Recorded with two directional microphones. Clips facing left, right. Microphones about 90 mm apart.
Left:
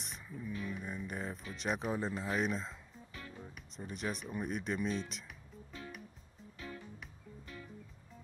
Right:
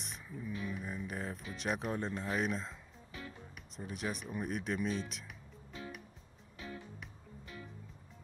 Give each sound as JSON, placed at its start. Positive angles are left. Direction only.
{"t": 0.0, "sound": "speech", "side_deg": 0}
{"t": 5.7, "sound": "music", "side_deg": 0}